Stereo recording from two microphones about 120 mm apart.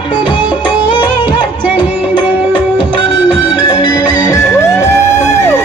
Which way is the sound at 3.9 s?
30° left (ahead or behind).